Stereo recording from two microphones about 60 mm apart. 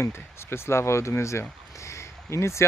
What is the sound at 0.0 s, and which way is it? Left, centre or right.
Speech, left.